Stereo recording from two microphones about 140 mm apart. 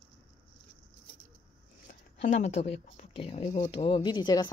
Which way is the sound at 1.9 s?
60° left (ahead or behind).